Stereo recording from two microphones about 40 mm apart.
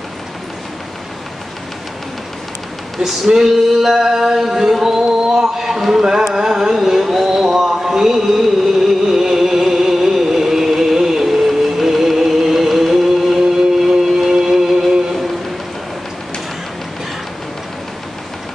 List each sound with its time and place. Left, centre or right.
3.0 s male singing: centre
13.8 s music: centre